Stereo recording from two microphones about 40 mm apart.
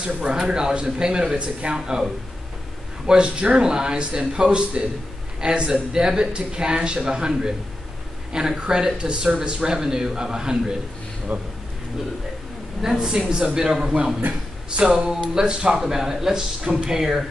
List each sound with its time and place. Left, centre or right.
0.0 s speech: right
3.1 s speech: right
11.3 s speech: right
12.8 s speech: centre
15.7 s speech: centre